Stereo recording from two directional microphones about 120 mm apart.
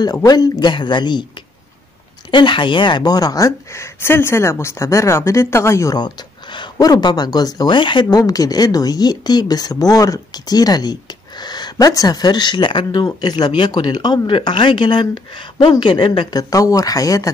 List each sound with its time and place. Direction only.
0.0 s speech: 35° left (ahead or behind)
2.3 s a woman's voice: 40° left (ahead or behind); by 5.9 s 25° left (ahead or behind)
5.9 s a woman's voice: 40° left (ahead or behind)